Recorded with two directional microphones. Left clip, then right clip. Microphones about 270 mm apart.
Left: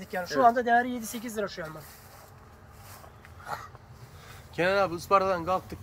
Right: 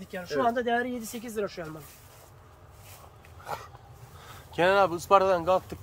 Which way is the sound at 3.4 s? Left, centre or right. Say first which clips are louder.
Even; right.